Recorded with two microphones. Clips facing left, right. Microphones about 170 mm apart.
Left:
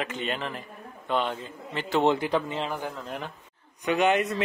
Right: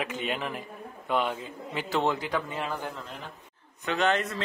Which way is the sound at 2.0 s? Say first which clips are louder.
Left 5 dB; 25° left (ahead or behind).